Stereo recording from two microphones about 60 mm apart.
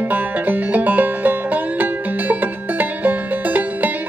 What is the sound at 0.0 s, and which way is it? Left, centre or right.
Music, right.